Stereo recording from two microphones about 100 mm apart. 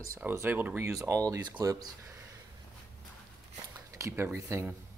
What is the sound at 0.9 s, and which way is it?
Speech, 30° right (ahead or behind).